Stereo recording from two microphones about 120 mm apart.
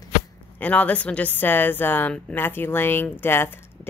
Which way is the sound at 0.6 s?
10° left (ahead or behind).